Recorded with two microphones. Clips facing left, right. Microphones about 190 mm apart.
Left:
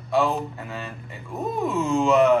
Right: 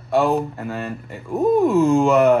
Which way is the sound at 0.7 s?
55° right (ahead or behind).